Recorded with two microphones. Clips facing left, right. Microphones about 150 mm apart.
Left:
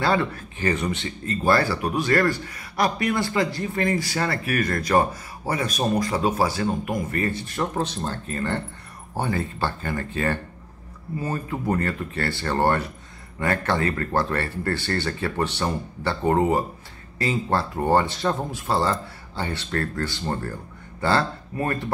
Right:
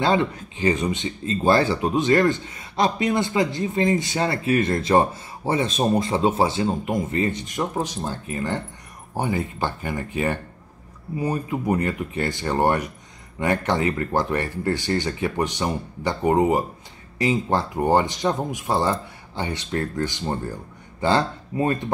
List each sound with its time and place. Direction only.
0.0 s speech: 20° right (ahead or behind)